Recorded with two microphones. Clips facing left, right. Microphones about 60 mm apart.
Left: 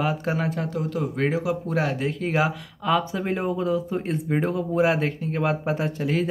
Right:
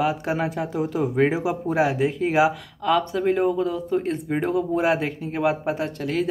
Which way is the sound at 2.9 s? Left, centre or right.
Centre.